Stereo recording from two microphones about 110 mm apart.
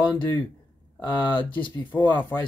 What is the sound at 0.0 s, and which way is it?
Speech, 45° left (ahead or behind).